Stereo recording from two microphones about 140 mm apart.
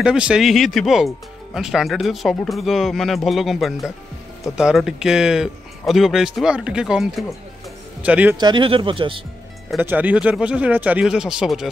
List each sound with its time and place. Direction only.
0.0 s speech: 5° right (ahead or behind)
8.4 s speech: 35° right (ahead or behind)
9.8 s speech: 15° right (ahead or behind)